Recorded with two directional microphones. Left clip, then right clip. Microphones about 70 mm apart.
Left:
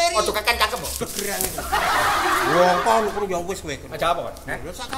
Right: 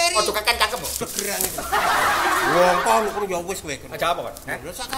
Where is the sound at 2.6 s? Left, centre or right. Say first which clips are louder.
Even; right.